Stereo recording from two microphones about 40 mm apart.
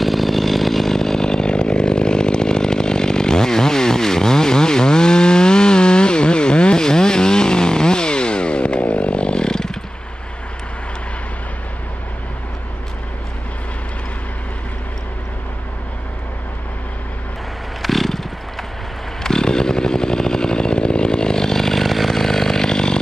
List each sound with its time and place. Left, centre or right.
0.0 s chainsaw: centre
17.8 s wild animals: centre
19.2 s chainsaw: centre